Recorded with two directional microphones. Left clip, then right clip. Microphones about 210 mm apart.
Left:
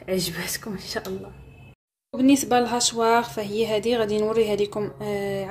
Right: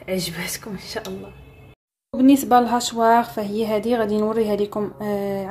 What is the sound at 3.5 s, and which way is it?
Speech, 40° right (ahead or behind).